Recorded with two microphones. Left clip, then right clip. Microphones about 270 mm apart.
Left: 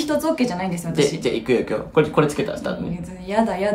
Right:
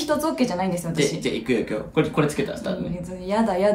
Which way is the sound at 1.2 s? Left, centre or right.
Centre.